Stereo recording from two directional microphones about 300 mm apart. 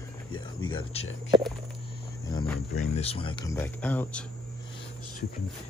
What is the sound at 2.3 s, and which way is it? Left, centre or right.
Speech, centre.